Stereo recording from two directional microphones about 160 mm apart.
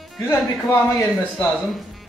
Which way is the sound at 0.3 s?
15° left (ahead or behind).